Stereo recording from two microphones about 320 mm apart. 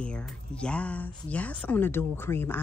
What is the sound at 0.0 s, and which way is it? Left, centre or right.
A woman's voice, centre.